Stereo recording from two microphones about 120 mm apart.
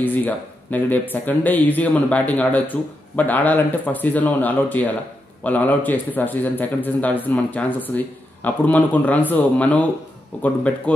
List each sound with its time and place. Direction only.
0.0 s speech: 15° left (ahead or behind)